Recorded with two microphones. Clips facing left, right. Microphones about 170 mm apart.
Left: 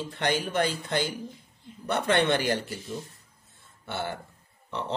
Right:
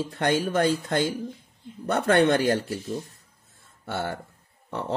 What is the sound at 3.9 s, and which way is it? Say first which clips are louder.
Speech: right 3 dB; 45° right (ahead or behind).